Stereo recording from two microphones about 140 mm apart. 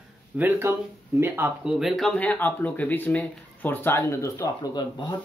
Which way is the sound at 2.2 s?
10° left (ahead or behind).